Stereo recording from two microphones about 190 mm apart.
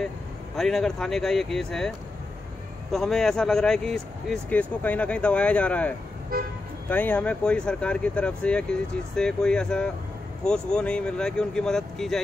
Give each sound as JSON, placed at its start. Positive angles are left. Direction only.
{"t": 0.6, "sound": "speech", "side_deg": 0}
{"t": 6.3, "sound": "speech", "side_deg": -50}
{"t": 6.9, "sound": "speech", "side_deg": 10}